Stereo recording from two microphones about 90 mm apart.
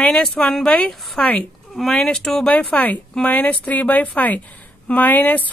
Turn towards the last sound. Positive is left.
turn(degrees=20)  # may be behind; listen again after turning